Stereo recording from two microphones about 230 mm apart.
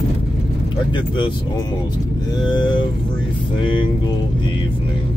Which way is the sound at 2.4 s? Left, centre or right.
Centre.